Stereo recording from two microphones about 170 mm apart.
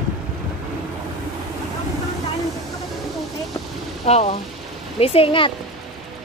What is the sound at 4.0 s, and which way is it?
Speech, 40° left (ahead or behind).